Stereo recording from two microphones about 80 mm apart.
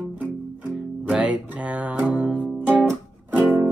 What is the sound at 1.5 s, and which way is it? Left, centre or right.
Music, centre.